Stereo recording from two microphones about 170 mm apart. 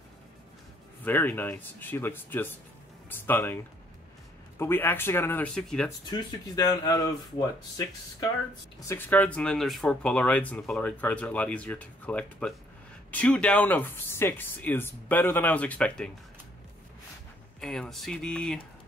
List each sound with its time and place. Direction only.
1.0 s speech: 10° left (ahead or behind)
4.6 s speech: 10° left (ahead or behind)
5.9 s speech: 25° left (ahead or behind); by 16.1 s 10° left (ahead or behind)
17.6 s speech: 5° left (ahead or behind)